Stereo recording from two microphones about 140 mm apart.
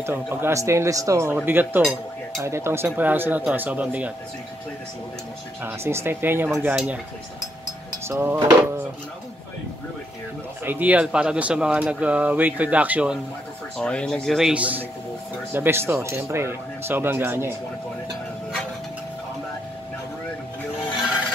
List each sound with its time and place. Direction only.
0.0 s speech: 15° right (ahead or behind)
5.6 s speech: 15° right (ahead or behind)
8.1 s speech: 20° right (ahead or behind)
10.6 s speech: 15° right (ahead or behind)
13.7 s speech: 5° left (ahead or behind); by 17.6 s 15° right (ahead or behind)